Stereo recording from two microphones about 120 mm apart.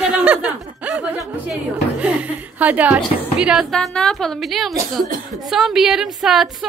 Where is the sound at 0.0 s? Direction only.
10° right (ahead or behind).